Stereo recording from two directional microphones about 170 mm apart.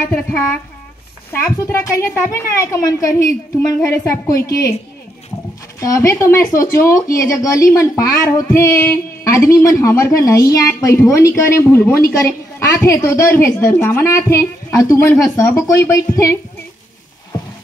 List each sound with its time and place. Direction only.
0.1 s a woman's voice: 10° left (ahead or behind)
5.8 s speech: 20° left (ahead or behind)